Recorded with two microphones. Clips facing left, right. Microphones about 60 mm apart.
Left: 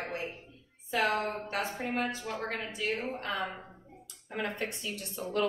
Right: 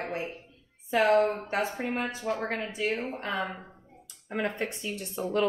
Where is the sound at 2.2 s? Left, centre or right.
Centre.